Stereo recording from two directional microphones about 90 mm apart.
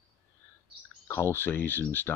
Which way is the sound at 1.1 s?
25° left (ahead or behind).